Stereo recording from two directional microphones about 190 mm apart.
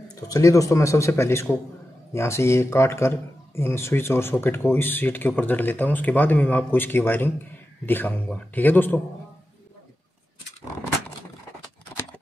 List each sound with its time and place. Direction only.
0.1 s speech: 15° left (ahead or behind)